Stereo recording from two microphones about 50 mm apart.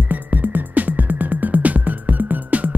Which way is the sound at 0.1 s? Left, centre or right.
Right.